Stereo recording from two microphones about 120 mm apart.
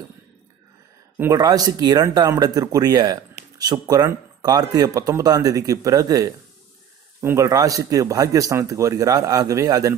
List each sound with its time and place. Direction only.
1.3 s speech: 30° right (ahead or behind)